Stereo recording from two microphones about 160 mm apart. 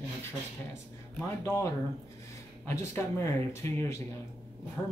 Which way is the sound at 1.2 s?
15° left (ahead or behind).